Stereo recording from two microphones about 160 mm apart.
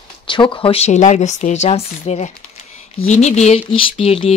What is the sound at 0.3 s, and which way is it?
Speech, 30° left (ahead or behind).